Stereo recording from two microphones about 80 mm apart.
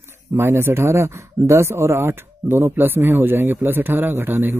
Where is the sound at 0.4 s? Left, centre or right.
Right.